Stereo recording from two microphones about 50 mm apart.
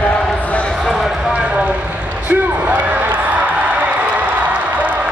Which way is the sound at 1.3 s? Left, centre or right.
Right.